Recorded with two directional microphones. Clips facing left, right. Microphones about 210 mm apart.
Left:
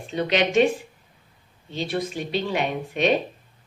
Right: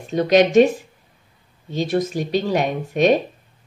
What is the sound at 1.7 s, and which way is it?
A woman's voice, 45° right (ahead or behind).